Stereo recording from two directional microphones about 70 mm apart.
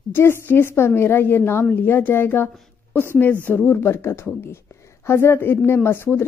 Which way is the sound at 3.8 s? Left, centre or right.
Left.